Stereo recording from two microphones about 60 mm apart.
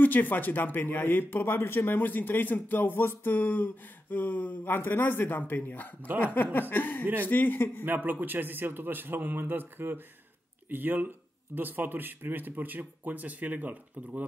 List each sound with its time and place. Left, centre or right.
0.0 s speech: left
7.8 s speech: right